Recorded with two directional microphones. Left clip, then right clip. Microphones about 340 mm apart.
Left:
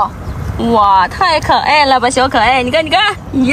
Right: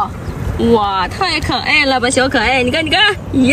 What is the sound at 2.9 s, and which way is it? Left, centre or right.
Speech, centre.